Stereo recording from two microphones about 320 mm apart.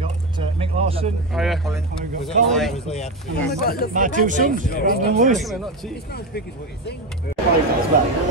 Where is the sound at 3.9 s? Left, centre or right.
Right.